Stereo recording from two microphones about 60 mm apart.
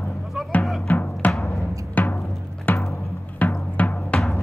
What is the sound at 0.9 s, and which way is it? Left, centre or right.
Music, left.